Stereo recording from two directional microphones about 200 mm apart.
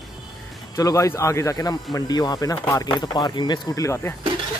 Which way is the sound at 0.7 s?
15° left (ahead or behind).